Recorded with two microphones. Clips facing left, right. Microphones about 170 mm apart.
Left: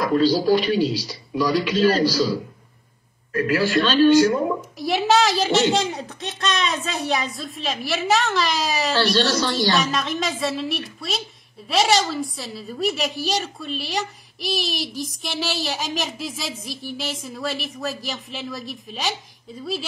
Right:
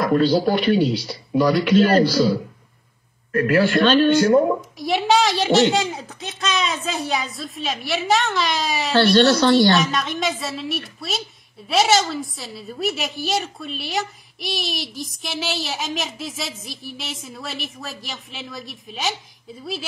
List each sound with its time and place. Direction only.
0.0 s speech: 60° right (ahead or behind)
3.3 s speech: 60° right (ahead or behind)
4.7 s a woman's voice: centre (ahead or behind)
8.9 s speech: 60° right (ahead or behind)
9.8 s a woman's voice: centre (ahead or behind)